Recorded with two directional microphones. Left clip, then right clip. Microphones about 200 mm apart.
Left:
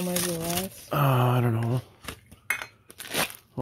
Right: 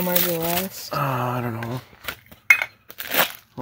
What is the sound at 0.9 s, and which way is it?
Speech, 40° left (ahead or behind).